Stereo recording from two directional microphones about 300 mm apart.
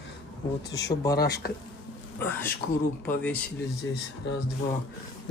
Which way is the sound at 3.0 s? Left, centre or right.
Centre.